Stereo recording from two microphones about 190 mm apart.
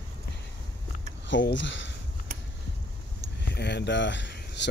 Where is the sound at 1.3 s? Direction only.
75° left (ahead or behind).